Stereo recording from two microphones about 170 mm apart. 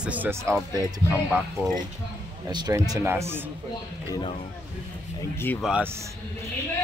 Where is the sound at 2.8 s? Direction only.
15° right (ahead or behind).